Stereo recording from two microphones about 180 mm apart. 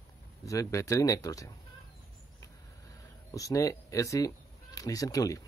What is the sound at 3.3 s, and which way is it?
A man's voice, 20° left (ahead or behind).